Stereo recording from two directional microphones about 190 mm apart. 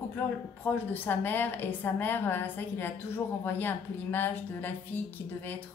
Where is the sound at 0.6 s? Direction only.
10° left (ahead or behind).